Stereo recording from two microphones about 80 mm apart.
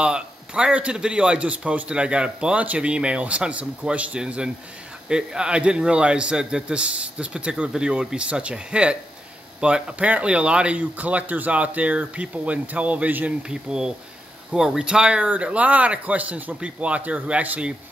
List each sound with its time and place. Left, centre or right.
0.0 s a man's voice: centre